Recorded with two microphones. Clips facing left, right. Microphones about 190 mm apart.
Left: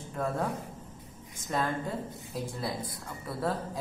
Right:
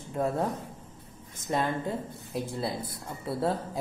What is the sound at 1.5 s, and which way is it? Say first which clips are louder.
Speech: right 2 dB; 25° right (ahead or behind).